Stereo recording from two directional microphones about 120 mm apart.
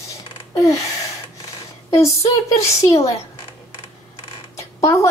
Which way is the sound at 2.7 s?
25° left (ahead or behind).